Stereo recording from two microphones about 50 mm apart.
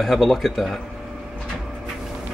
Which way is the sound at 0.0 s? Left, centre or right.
Centre.